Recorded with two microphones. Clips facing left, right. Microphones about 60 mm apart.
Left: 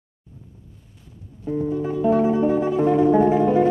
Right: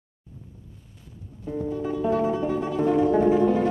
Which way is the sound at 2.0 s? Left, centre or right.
Left.